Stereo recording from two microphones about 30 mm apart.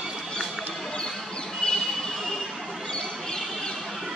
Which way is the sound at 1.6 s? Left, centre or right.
Left.